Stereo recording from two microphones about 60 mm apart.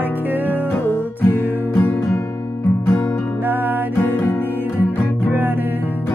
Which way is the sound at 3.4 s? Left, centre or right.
Right.